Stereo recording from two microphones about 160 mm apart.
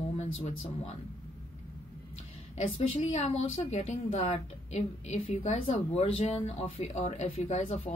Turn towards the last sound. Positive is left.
turn(degrees=40)  # may be behind; listen again after turning